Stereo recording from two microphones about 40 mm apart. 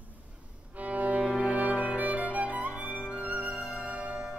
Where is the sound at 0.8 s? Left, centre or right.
Right.